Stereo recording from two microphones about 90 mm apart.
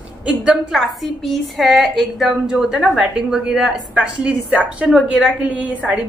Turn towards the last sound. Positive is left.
turn(degrees=-15)  # may be behind; listen again after turning